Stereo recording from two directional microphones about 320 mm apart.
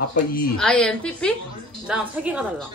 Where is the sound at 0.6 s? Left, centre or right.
Centre.